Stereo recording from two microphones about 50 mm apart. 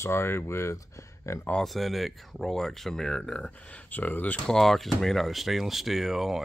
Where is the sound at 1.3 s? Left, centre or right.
Left.